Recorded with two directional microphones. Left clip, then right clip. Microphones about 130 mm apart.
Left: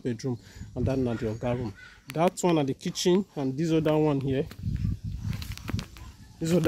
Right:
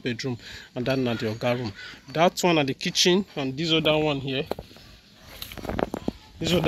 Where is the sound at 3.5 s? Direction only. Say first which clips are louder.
Right 3 dB; 65° left (ahead or behind); by 4.5 s 80° left.